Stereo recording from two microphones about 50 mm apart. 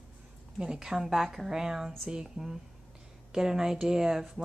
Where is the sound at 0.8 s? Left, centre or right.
Centre.